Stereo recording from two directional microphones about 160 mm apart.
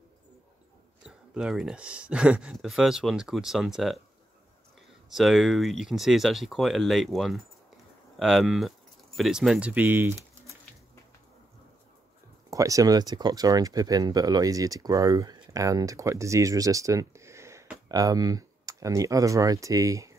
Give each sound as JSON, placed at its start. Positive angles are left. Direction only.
{"t": 1.0, "sound": "speech", "side_deg": -5}
{"t": 5.1, "sound": "speech", "side_deg": 0}
{"t": 12.4, "sound": "speech", "side_deg": -20}